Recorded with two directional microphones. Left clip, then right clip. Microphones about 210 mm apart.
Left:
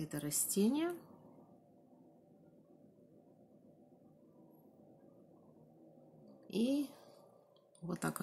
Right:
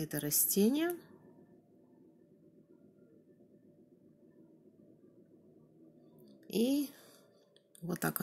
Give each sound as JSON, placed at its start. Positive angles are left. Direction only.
{"t": 0.0, "sound": "a woman's voice", "side_deg": -15}
{"t": 6.4, "sound": "a woman's voice", "side_deg": -10}